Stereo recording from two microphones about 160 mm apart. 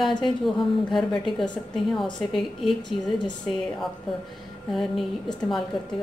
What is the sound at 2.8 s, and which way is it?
Speech, 30° left (ahead or behind).